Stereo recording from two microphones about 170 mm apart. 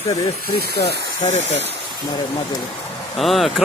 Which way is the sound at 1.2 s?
40° left (ahead or behind).